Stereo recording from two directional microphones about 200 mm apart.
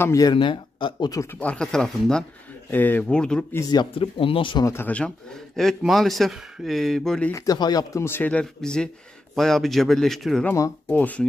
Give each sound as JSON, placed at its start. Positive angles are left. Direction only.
{"t": 0.0, "sound": "speech", "side_deg": 15}
{"t": 1.4, "sound": "speech", "side_deg": 5}
{"t": 3.7, "sound": "speech", "side_deg": 25}
{"t": 7.3, "sound": "speech", "side_deg": 20}
{"t": 10.5, "sound": "speech", "side_deg": 10}